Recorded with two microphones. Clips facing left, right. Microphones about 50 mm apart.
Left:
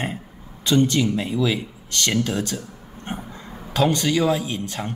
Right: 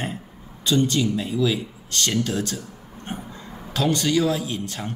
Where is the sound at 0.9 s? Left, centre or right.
Left.